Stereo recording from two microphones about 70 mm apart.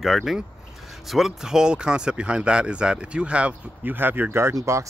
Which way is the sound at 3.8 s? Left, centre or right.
Right.